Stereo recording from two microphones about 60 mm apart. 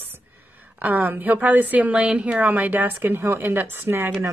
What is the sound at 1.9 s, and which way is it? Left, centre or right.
Speech, centre.